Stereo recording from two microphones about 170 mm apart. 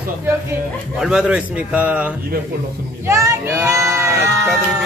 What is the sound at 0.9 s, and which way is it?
A man's voice, 5° right (ahead or behind).